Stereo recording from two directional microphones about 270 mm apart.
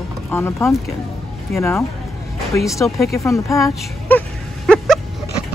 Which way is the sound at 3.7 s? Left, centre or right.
Centre.